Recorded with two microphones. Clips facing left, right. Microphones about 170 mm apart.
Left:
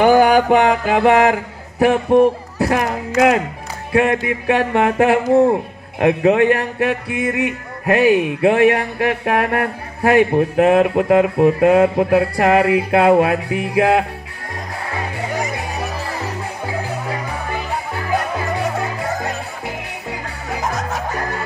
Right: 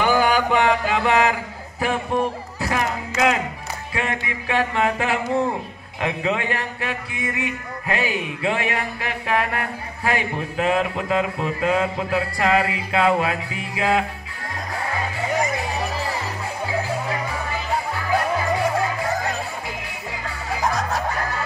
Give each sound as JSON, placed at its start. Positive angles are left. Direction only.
{"t": 0.0, "sound": "a sound", "side_deg": 55}
{"t": 3.9, "sound": "speech", "side_deg": 55}
{"t": 19.9, "sound": "music", "side_deg": 55}